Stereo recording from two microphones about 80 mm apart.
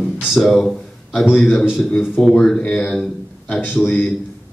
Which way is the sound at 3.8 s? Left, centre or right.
Centre.